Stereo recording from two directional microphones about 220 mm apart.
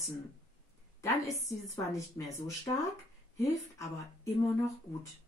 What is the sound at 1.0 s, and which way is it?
Speech, 15° left (ahead or behind).